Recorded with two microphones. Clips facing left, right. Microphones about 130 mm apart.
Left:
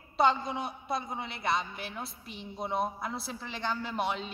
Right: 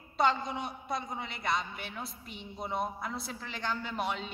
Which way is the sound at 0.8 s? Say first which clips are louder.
Left 2 dB; 10° left (ahead or behind).